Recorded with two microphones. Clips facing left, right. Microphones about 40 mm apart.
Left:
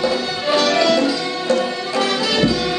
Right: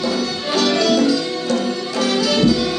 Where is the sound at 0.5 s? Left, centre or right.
Centre.